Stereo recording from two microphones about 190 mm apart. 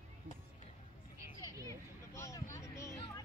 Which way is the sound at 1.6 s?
15° left (ahead or behind).